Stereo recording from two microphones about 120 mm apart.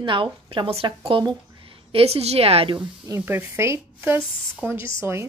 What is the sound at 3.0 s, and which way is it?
Speech, 20° right (ahead or behind).